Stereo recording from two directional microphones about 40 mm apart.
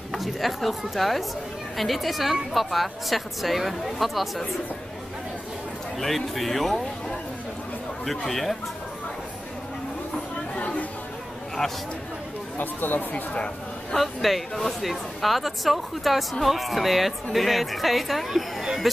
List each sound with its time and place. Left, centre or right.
0.1 s a woman's voice: centre
5.9 s a woman's voice: centre
8.3 s a woman's voice: centre
12.5 s speech: left
13.1 s speech: left
13.9 s a woman's voice: centre